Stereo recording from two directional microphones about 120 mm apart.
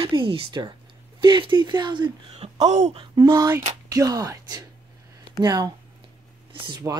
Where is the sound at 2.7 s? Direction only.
75° right (ahead or behind).